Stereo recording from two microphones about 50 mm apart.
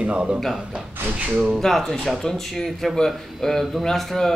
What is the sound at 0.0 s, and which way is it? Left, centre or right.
Speech, right.